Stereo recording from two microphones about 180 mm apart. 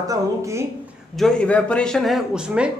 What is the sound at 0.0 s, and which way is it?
Speech, 20° right (ahead or behind).